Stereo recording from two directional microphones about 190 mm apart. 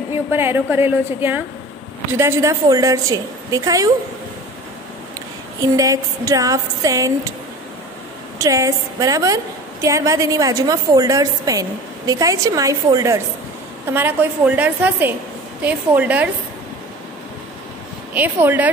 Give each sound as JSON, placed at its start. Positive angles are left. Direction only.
{"t": 0.3, "sound": "a woman's voice", "side_deg": -10}
{"t": 5.6, "sound": "a woman's voice", "side_deg": -15}
{"t": 8.4, "sound": "a woman's voice", "side_deg": -15}
{"t": 18.1, "sound": "a woman's voice", "side_deg": -10}